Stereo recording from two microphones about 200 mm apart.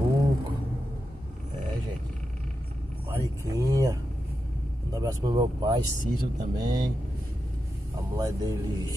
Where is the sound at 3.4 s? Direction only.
15° right (ahead or behind).